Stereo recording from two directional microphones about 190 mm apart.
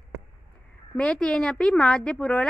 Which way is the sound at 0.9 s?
5° left (ahead or behind).